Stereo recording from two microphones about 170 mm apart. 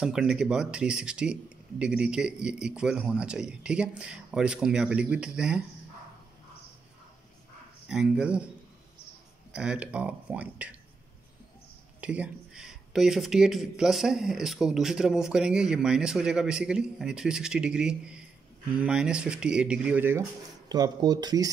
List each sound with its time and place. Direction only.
0.0 s speech: 5° right (ahead or behind)
7.9 s speech: 5° right (ahead or behind)
9.5 s speech: 5° right (ahead or behind)
12.0 s speech: 10° right (ahead or behind)
20.6 s speech: 25° right (ahead or behind)